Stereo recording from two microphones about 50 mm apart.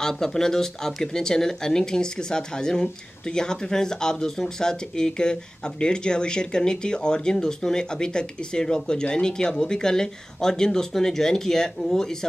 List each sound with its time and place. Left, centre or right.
0.0 s speech: centre